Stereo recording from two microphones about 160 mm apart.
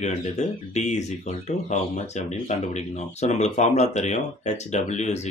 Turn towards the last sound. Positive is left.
turn(degrees=45)  # may be behind; listen again after turning